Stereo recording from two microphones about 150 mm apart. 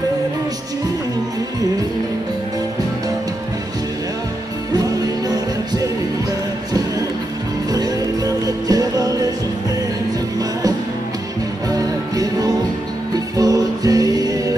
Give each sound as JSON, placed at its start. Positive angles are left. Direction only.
{"t": 4.7, "sound": "music", "side_deg": -25}
{"t": 7.7, "sound": "music", "side_deg": -25}
{"t": 11.7, "sound": "music", "side_deg": -25}